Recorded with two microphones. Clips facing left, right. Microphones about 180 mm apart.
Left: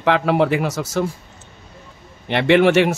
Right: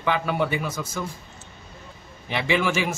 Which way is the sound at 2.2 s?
70° left (ahead or behind).